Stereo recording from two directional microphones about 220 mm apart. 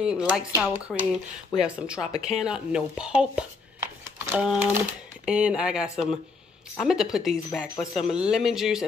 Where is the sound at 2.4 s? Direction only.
5° right (ahead or behind).